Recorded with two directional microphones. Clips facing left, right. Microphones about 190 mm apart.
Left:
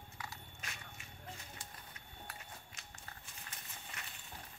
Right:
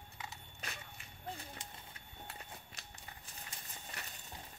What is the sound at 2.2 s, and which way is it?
Horse, 35° right (ahead or behind).